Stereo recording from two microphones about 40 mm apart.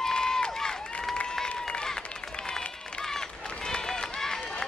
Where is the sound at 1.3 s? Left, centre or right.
Centre.